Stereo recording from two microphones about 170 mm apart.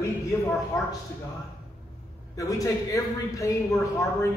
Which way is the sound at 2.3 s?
20° left (ahead or behind).